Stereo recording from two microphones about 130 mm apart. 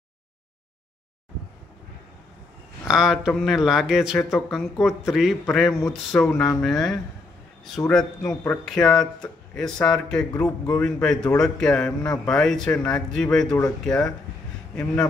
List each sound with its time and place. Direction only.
2.9 s speech: 5° right (ahead or behind)
5.7 s speech: 20° left (ahead or behind)
6.6 s speech: centre (ahead or behind)